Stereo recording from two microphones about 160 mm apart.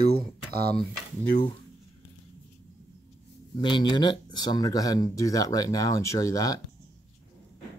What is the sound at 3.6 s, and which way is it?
Speech, 30° left (ahead or behind).